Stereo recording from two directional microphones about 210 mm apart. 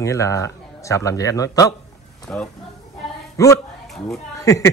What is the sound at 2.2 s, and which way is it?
Speech, 5° left (ahead or behind).